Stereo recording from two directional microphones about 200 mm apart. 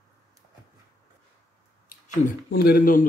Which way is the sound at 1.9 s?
45° left (ahead or behind).